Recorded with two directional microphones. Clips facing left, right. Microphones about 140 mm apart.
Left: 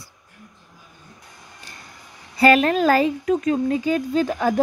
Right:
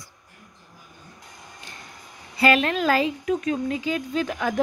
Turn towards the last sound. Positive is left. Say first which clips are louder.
# left 5 dB
turn(degrees=35)  # may be behind; listen again after turning